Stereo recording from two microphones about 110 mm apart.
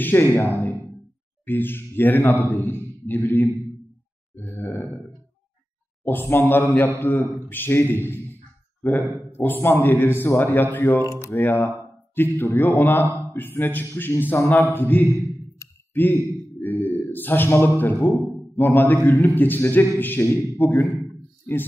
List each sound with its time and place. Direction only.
0.0 s a man's voice: 20° left (ahead or behind)
4.4 s grunt: 20° left (ahead or behind)
6.0 s a man's voice: 20° left (ahead or behind)
9.3 s a man's voice: 20° left (ahead or behind)